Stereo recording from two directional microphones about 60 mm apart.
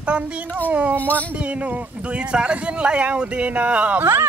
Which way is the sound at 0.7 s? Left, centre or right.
Right.